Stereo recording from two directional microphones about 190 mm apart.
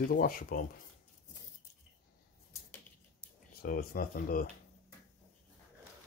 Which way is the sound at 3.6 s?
50° left (ahead or behind).